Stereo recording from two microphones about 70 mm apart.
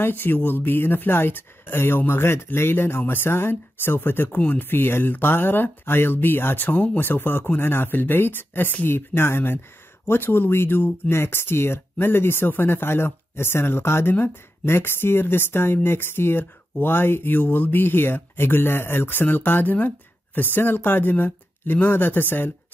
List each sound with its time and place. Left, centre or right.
0.0 s speech: left